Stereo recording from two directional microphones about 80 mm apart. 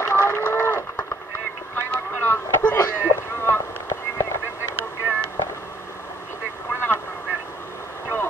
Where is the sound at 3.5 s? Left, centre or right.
Left.